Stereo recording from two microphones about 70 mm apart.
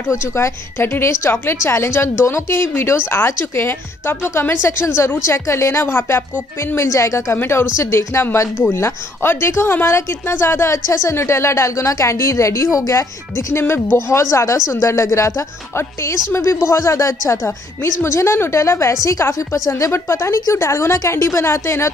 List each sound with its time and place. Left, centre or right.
0.1 s a woman's voice: left
7.3 s a woman's voice: left
13.5 s a woman's voice: left